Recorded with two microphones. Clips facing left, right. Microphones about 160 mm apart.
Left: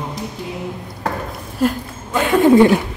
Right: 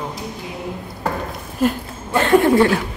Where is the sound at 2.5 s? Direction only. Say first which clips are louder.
Left 4 dB; 20° left (ahead or behind).